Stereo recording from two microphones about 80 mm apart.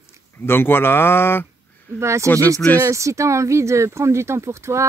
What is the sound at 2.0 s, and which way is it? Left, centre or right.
Speech, right.